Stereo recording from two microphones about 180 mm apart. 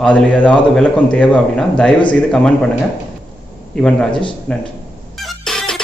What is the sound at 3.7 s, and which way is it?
Speech, 5° left (ahead or behind).